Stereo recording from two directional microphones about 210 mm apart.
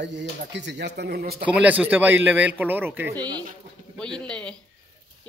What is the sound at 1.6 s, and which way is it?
A man's voice, 5° right (ahead or behind).